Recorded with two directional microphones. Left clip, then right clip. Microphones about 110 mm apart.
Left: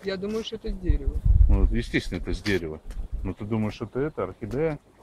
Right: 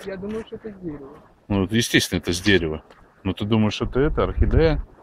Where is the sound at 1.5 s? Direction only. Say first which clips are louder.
Right 9 dB; 20° right (ahead or behind).